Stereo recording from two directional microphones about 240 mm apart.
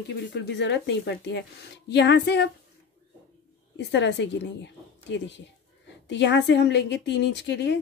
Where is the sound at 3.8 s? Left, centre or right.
Left.